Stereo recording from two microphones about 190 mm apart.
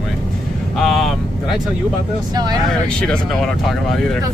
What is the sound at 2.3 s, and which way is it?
Speech, 20° right (ahead or behind).